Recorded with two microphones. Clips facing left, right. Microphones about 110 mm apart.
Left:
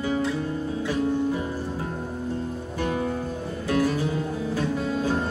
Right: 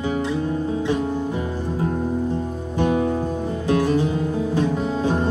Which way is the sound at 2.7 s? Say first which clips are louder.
Right 7 dB; 20° right (ahead or behind).